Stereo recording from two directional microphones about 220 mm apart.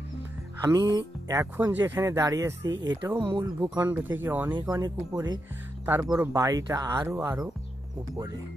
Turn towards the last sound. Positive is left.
turn(degrees=-10)  # may be behind; listen again after turning